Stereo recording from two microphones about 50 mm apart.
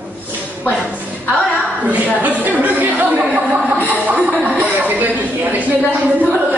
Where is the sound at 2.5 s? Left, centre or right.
Right.